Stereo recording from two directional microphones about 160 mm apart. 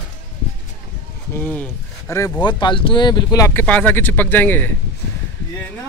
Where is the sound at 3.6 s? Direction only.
10° left (ahead or behind).